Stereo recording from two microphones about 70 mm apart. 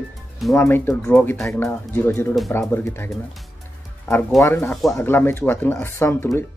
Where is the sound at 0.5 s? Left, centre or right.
Left.